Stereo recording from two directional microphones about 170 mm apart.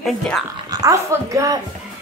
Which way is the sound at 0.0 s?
5° left (ahead or behind).